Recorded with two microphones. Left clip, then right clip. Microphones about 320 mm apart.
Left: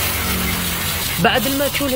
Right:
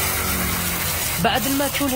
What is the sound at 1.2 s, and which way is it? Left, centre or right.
Speech, centre.